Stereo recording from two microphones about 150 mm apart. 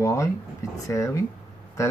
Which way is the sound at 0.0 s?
20° left (ahead or behind).